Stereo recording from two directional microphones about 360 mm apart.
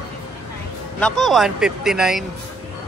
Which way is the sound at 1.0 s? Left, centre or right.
Centre.